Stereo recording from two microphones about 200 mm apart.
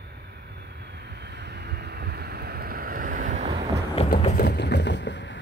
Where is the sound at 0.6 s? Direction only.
55° right (ahead or behind); by 3.6 s 35° right (ahead or behind).